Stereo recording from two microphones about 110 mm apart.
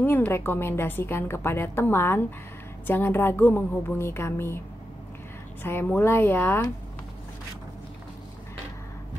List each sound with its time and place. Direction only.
0.0 s a woman's voice: 20° left (ahead or behind)
5.6 s a woman's voice: 20° left (ahead or behind)